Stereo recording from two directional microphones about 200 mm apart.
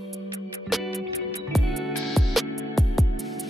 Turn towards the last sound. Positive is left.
turn(degrees=0)  # may be behind; listen again after turning